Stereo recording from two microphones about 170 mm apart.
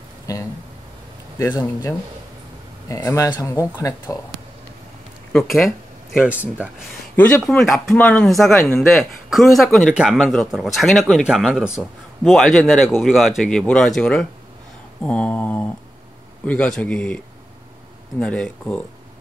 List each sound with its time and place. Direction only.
0.3 s a sound: 20° left (ahead or behind)
1.6 s a man's voice: 15° left (ahead or behind)
5.3 s speech: centre (ahead or behind)
7.2 s a man's voice: 10° left (ahead or behind)
18.2 s a man's voice: 5° left (ahead or behind)